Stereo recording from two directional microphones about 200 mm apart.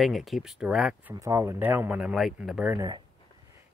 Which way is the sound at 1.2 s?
15° right (ahead or behind).